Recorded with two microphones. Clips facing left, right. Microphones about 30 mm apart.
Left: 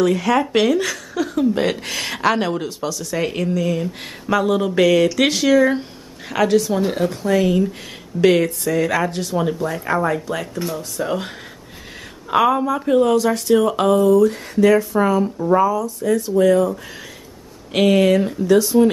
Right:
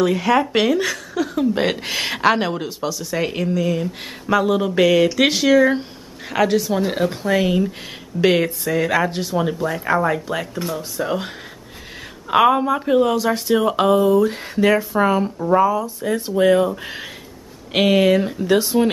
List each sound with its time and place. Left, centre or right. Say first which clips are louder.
0.0 s speech: even; centre
6.9 s speech: even; centre
12.3 s speech: right 1 dB; centre
15.3 s speech: even; centre
15.6 s speech: even; right
17.7 s speech: left 1 dB; centre
18.5 s speech: left 3 dB; right